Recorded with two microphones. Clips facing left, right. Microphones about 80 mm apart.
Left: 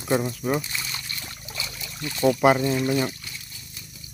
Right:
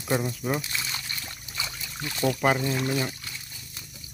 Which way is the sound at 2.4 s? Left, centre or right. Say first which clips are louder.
Left 5 dB; centre.